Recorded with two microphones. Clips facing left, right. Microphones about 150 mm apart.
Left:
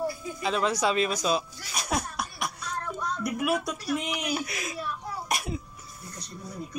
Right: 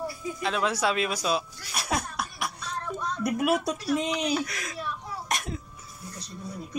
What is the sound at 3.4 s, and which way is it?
Speech, 35° right (ahead or behind).